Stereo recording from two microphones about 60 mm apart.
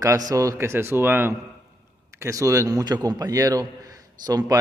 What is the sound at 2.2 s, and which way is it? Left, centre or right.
A man's voice, right.